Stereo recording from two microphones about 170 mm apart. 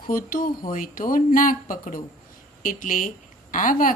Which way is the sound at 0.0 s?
55° left (ahead or behind).